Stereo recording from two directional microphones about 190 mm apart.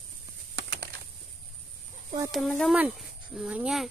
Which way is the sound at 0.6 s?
60° right (ahead or behind).